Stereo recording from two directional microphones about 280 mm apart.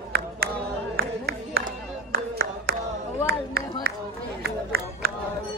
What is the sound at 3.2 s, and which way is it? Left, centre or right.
Run, right.